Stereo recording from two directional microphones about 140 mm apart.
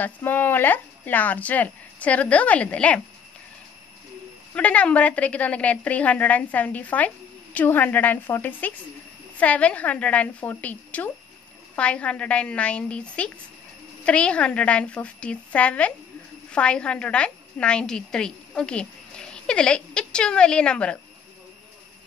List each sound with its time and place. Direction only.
0.0 s speech: 15° left (ahead or behind)
4.6 s a woman's voice: 10° left (ahead or behind)